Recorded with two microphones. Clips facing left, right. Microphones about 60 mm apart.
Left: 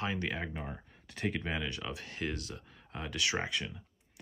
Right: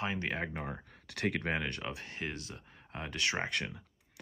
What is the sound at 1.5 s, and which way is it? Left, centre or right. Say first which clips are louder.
Speech: right 2 dB; right.